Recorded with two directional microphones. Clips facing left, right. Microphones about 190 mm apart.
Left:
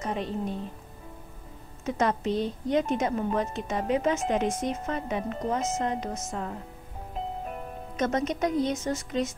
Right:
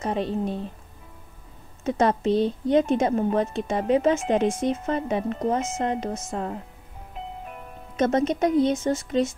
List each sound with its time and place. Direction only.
0.0 s a woman's voice: 30° right (ahead or behind)
1.9 s a woman's voice: 30° right (ahead or behind)
7.2 s music: 40° left (ahead or behind)
8.0 s a woman's voice: 30° right (ahead or behind)